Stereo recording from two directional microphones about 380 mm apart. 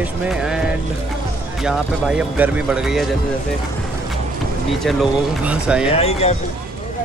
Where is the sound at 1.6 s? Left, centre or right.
Centre.